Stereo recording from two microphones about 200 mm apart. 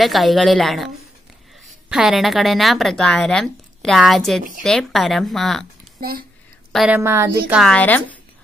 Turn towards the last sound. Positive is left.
turn(degrees=5)  # may be behind; listen again after turning